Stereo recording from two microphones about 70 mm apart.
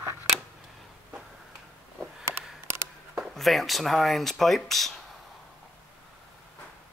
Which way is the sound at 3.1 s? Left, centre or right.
Centre.